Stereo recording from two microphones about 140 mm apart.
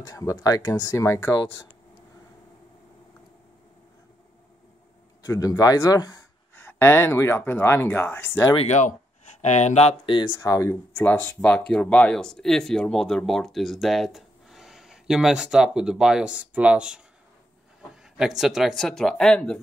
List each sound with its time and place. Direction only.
0.0 s speech: 25° left (ahead or behind)
5.2 s speech: 25° left (ahead or behind)
6.5 s speech: 15° left (ahead or behind)
8.5 s speech: 55° left (ahead or behind)
10.1 s speech: 35° left (ahead or behind)
10.7 s speech: 15° left (ahead or behind); by 17.0 s 10° right (ahead or behind)
18.1 s speech: 5° right (ahead or behind)